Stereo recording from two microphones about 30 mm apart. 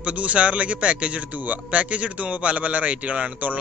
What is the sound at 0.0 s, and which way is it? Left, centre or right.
A man's voice, right.